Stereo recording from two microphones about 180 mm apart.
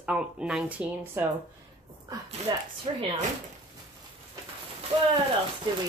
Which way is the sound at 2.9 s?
30° right (ahead or behind).